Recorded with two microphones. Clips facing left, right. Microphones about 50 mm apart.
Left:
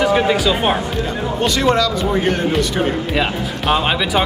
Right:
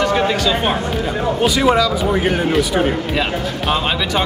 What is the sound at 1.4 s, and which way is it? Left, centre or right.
A man's voice, centre.